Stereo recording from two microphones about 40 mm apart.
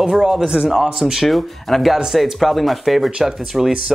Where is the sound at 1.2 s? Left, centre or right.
Centre.